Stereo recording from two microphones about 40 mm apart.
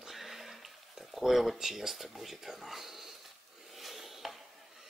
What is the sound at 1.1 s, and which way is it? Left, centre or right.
Speech, centre.